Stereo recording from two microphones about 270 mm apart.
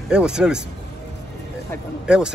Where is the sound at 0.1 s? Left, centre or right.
Centre.